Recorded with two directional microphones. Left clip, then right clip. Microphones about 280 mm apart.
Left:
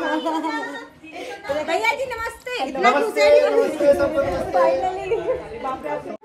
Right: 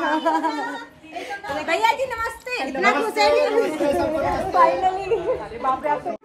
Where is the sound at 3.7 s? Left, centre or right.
Centre.